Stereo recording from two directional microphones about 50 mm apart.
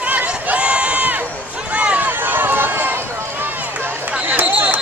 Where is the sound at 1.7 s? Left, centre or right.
Right.